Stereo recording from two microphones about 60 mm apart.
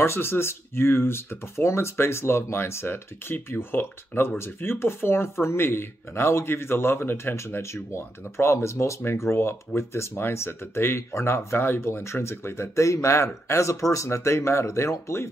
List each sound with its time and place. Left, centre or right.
0.0 s speech: left